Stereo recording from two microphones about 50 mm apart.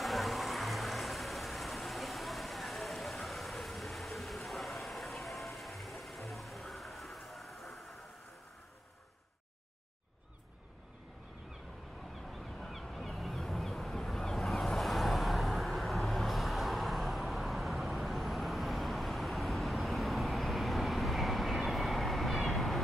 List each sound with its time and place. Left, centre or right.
0.0 s vehicle: centre
6.7 s music: centre
12.2 s a sound: centre